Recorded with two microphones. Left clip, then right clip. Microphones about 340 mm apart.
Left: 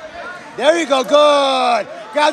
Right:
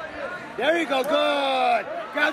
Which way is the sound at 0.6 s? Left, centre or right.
Centre.